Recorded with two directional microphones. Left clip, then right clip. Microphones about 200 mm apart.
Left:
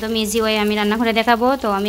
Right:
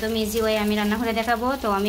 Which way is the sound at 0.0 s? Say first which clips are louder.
Left 4 dB; 40° left (ahead or behind).